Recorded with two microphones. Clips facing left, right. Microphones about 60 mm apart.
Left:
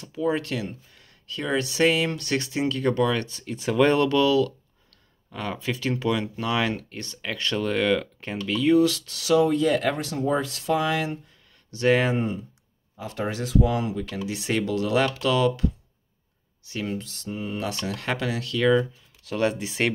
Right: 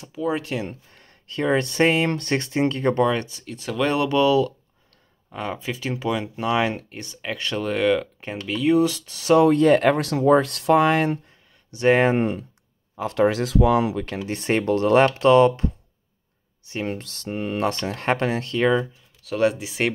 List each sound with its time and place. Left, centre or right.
0.1 s speech: centre
0.7 s speech: right
3.4 s speech: centre
4.1 s speech: centre
8.7 s speech: right
9.4 s speech: right
9.9 s speech: right
11.7 s speech: right
12.1 s speech: right
14.1 s speech: right
15.1 s speech: right
17.0 s speech: right
17.8 s speech: right
18.8 s speech: centre